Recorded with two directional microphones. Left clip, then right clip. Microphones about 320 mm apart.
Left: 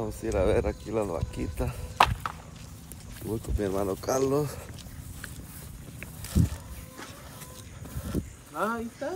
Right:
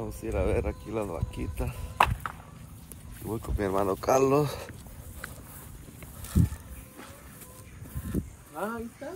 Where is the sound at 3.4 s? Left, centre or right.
Centre.